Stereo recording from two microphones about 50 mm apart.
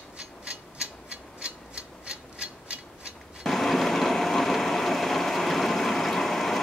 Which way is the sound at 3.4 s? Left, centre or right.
Centre.